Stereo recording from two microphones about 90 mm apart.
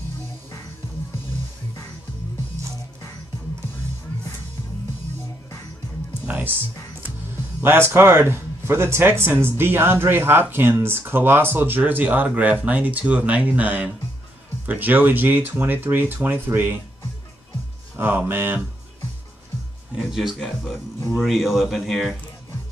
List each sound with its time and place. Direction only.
6.2 s music: 15° right (ahead or behind)
7.6 s speech: 25° right (ahead or behind)
17.9 s speech: 20° right (ahead or behind)
20.0 s speech: 5° right (ahead or behind)